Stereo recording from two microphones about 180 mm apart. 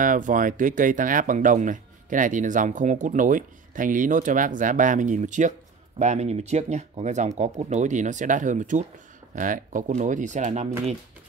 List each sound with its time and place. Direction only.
0.0 s speech: 45° right (ahead or behind)